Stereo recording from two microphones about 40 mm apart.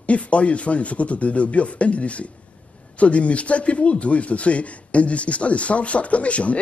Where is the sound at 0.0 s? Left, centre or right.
Left.